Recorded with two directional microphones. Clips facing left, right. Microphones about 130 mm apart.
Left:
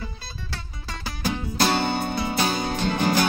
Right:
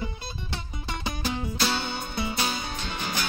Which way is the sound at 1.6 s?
55° left (ahead or behind).